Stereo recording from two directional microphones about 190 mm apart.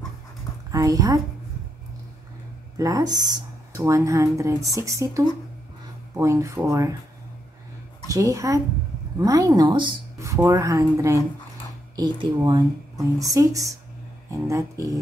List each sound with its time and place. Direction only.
0.7 s a woman's voice: 20° right (ahead or behind)
2.8 s speech: 20° right (ahead or behind)
8.1 s speech: 15° right (ahead or behind)